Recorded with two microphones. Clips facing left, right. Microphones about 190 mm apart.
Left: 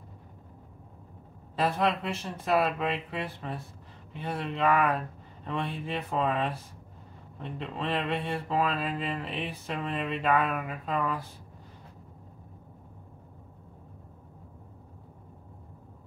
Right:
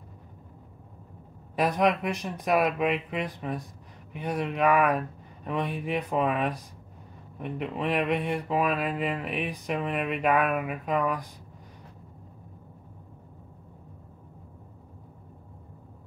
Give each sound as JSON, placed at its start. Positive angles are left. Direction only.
{"t": 1.6, "sound": "speech", "side_deg": -15}